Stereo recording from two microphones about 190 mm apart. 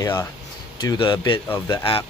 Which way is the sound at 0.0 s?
15° left (ahead or behind).